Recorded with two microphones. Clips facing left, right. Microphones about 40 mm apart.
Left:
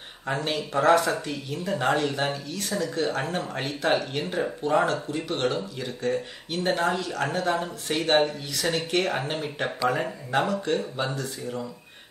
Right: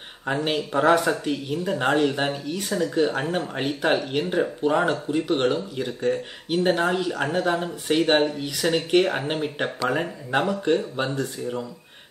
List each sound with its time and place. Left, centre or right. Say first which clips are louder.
0.3 s speech: right 3 dB; centre